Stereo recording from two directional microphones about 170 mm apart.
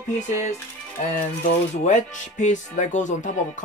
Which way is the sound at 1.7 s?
45° left (ahead or behind).